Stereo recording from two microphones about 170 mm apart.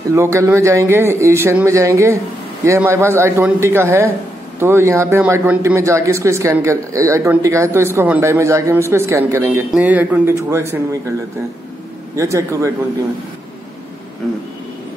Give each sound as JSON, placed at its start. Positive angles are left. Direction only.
{"t": 0.1, "sound": "speech", "side_deg": -15}
{"t": 12.2, "sound": "speech", "side_deg": -20}